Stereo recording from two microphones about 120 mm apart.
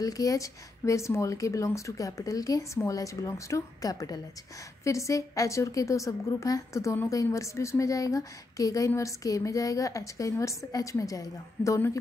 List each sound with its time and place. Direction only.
0.0 s a woman's voice: 30° left (ahead or behind)